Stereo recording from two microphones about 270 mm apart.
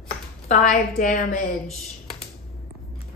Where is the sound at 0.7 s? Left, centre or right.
Left.